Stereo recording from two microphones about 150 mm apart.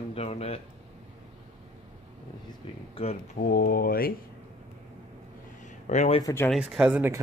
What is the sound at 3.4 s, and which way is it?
Speech, 90° left.